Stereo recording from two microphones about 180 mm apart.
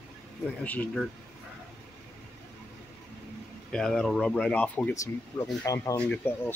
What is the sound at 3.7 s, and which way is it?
Speech, 5° left (ahead or behind).